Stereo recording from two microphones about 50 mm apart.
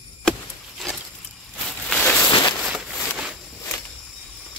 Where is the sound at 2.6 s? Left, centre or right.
Right.